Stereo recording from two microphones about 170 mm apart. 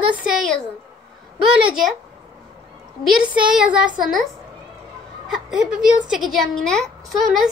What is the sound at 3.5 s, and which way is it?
Speech, 5° right (ahead or behind).